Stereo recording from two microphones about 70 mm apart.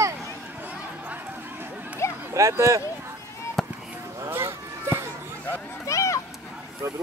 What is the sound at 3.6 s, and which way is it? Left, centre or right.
Chop, centre.